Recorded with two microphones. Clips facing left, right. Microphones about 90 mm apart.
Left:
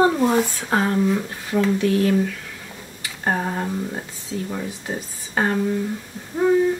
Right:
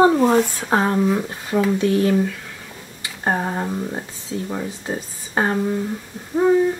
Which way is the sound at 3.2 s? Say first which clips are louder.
Right 1 dB; 15° right (ahead or behind).